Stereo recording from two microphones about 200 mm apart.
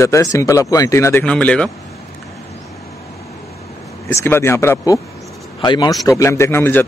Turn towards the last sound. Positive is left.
turn(degrees=10)  # may be behind; listen again after turning